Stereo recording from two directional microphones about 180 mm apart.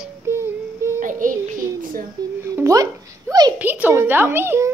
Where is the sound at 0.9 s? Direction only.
45° right (ahead or behind).